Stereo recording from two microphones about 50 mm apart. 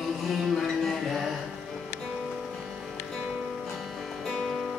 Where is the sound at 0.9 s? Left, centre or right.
Centre.